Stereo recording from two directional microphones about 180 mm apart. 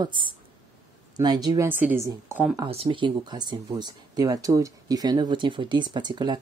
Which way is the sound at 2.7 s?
30° right (ahead or behind).